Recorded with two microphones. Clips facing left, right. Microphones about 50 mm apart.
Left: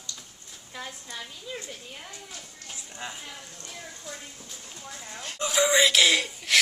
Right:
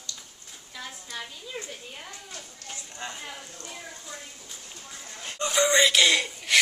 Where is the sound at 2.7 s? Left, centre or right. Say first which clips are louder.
Right 1 dB; centre.